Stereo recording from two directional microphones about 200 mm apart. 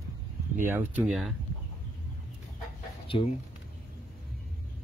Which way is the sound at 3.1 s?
25° left (ahead or behind).